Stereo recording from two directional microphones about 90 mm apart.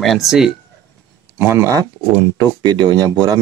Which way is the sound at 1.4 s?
30° right (ahead or behind).